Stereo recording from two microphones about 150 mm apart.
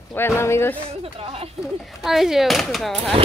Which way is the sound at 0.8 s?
40° right (ahead or behind).